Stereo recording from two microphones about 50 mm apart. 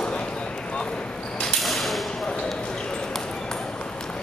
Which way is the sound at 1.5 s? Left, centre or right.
Centre.